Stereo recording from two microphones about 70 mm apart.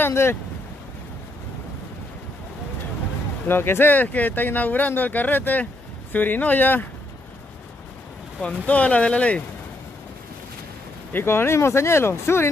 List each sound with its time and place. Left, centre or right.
0.0 s speech: left
3.4 s speech: left
8.6 s speech: centre
11.1 s speech: left